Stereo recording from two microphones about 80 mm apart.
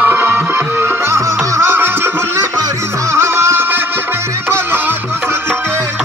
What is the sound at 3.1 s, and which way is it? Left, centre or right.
Music, right.